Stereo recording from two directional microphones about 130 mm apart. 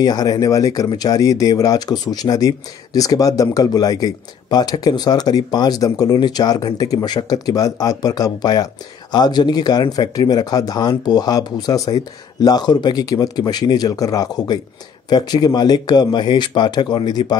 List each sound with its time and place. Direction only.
0.0 s speech: 30° left (ahead or behind)